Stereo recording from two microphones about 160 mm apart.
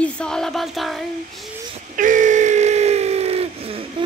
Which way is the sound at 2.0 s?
55° right (ahead or behind).